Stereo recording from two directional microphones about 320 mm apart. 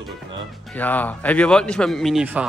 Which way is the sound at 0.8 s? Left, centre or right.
Centre.